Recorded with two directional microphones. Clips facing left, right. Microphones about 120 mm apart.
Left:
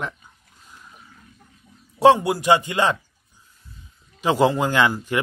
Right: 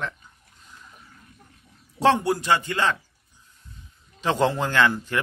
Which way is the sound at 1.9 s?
10° left (ahead or behind).